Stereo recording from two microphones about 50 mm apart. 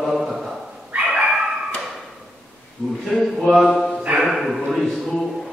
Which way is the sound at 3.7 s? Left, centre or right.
Centre.